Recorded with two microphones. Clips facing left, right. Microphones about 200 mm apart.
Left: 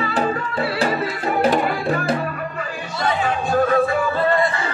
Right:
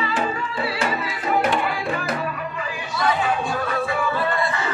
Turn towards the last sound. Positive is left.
turn(degrees=45)  # may be behind; listen again after turning